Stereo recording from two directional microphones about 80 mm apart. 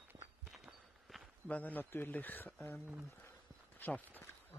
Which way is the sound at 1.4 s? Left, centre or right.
Left.